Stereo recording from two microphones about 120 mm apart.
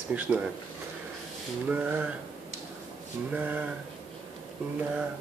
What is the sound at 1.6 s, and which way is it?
Speech, 15° right (ahead or behind).